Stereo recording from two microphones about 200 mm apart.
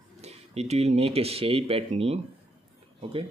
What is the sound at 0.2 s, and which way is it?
Speech, 30° right (ahead or behind).